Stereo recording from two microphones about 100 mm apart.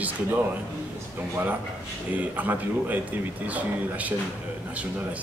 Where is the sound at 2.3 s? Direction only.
20° right (ahead or behind).